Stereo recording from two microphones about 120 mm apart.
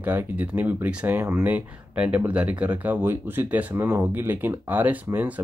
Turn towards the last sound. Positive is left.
turn(degrees=-15)  # may be behind; listen again after turning